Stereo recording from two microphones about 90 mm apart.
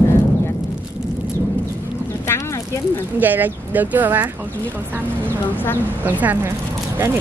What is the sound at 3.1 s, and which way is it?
Speech, 20° right (ahead or behind).